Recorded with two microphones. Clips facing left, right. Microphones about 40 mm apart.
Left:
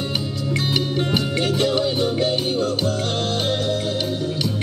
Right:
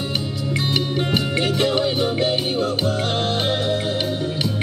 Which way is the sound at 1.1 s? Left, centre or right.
Centre.